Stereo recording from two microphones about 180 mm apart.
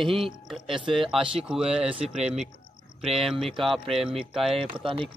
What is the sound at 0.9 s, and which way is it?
Speech, centre (ahead or behind).